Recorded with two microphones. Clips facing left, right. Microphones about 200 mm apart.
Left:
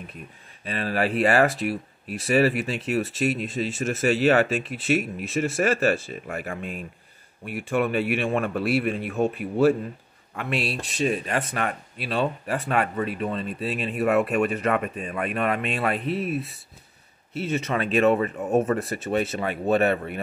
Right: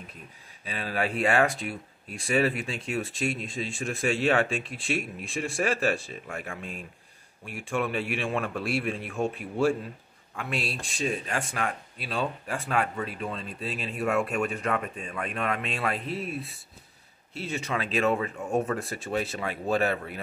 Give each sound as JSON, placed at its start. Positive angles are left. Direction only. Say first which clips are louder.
{"t": 0.7, "sound": "speech", "louder": "left 5 dB", "side_deg": 0}
{"t": 18.4, "sound": "speech", "louder": "left 5 dB", "side_deg": 20}
{"t": 18.7, "sound": "speech", "louder": "left 6 dB", "side_deg": 0}